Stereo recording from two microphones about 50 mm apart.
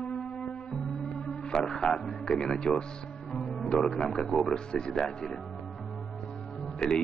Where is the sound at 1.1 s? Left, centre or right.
Centre.